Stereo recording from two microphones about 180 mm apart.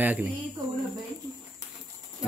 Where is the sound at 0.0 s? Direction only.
10° right (ahead or behind).